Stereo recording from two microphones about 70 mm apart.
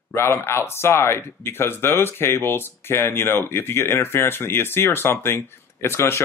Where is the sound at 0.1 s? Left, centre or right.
Left.